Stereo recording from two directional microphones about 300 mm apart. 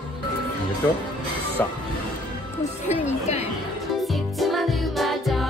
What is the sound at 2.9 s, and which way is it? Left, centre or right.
Music, left.